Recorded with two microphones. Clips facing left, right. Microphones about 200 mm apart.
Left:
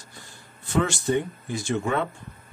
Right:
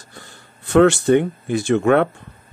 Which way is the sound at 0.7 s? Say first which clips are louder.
Right 11 dB; 65° right (ahead or behind).